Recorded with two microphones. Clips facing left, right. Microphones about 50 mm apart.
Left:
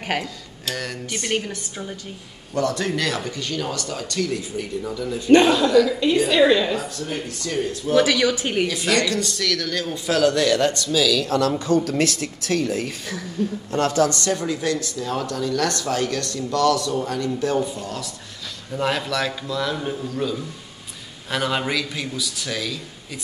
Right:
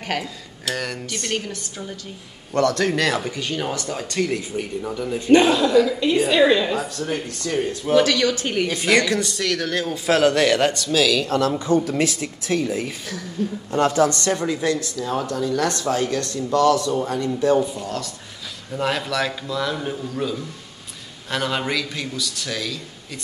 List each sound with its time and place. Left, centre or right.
0.0 s speech: centre
0.7 s a man's voice: centre
1.1 s a woman's voice: centre
2.5 s a man's voice: right
3.2 s speech: centre
4.2 s speech: right
5.3 s a man's voice: centre
6.1 s speech: centre
6.4 s a woman's voice: centre
6.7 s speech: right
8.0 s a woman's voice: centre
8.8 s a woman's voice: right
17.0 s speech: right
18.7 s a man's voice: centre